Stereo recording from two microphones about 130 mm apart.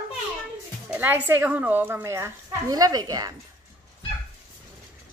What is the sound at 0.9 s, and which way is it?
A woman's voice, 15° right (ahead or behind).